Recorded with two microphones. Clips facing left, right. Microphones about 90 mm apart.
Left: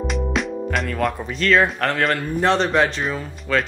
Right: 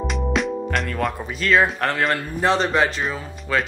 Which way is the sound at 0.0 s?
Centre (ahead or behind).